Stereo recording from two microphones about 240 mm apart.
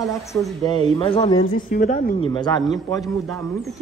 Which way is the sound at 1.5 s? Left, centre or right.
Left.